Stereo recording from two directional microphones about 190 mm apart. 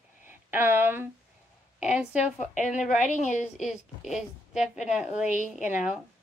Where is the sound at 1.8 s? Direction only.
5° right (ahead or behind).